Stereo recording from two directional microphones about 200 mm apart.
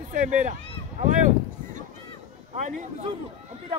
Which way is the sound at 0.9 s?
40° right (ahead or behind).